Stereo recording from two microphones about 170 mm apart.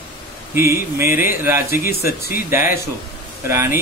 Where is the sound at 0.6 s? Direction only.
15° right (ahead or behind).